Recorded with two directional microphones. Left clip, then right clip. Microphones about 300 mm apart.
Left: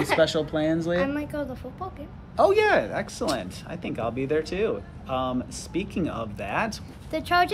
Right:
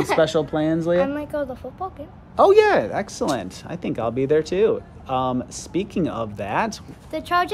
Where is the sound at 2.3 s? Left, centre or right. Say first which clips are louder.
Right 5 dB; right.